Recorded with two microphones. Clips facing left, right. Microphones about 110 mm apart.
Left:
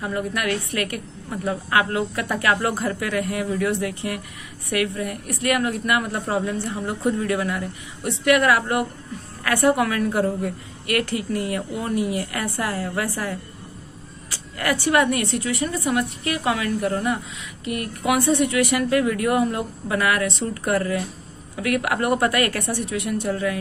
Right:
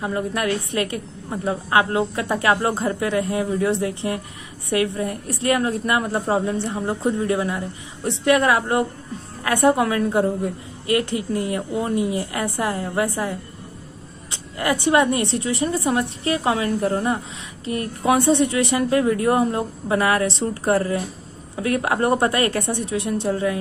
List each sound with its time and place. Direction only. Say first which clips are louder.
0.0 s a woman's voice: right 2 dB; 25° right (ahead or behind)